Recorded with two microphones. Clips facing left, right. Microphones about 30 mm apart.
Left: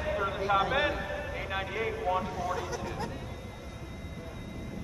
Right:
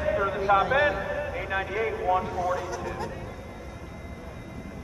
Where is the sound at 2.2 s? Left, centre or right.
Centre.